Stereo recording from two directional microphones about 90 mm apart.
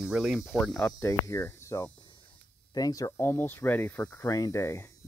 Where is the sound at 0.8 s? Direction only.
35° left (ahead or behind).